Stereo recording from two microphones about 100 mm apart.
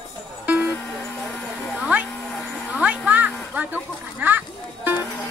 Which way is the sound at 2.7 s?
15° right (ahead or behind).